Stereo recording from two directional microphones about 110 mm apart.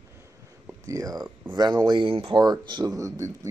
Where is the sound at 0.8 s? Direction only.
30° right (ahead or behind); by 2.3 s 55° right (ahead or behind).